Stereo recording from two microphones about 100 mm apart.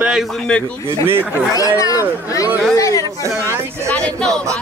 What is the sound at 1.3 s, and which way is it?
Speech, 35° left (ahead or behind).